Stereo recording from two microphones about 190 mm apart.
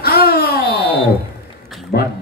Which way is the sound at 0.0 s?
55° left (ahead or behind).